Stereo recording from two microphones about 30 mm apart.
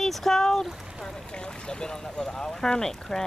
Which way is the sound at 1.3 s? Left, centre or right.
Left.